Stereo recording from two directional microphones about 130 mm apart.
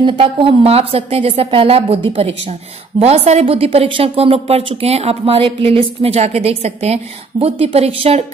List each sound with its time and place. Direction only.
0.0 s a woman's voice: 45° right (ahead or behind)